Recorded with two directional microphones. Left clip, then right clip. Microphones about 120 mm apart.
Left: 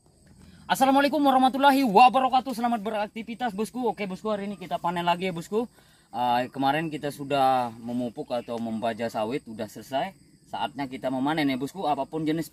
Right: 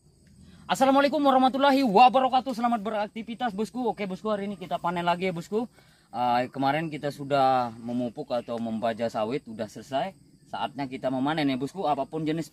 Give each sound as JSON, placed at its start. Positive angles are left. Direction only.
{"t": 0.7, "sound": "speech", "side_deg": 0}